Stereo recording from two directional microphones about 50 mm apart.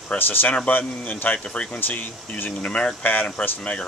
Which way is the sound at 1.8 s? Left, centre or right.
Left.